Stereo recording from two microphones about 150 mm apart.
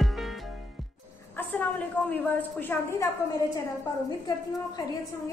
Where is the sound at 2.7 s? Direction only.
20° left (ahead or behind).